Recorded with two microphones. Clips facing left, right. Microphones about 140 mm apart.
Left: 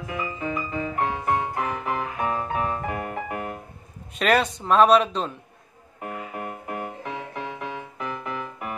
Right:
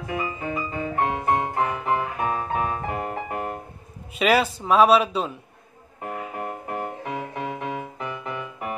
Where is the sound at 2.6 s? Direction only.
30° right (ahead or behind).